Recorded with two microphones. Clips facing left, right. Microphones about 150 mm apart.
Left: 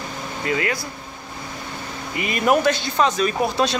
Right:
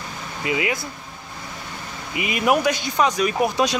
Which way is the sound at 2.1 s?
10° right (ahead or behind).